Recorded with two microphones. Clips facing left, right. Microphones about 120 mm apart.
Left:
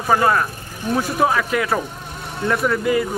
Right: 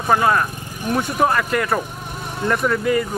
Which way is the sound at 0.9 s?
Centre (ahead or behind).